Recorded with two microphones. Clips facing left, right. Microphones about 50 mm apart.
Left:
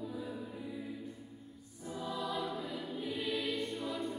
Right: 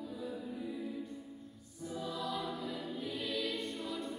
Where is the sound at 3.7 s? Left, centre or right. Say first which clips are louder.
Left 2 dB; centre.